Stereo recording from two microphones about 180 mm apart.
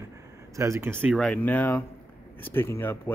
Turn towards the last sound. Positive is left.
turn(degrees=15)  # may be behind; listen again after turning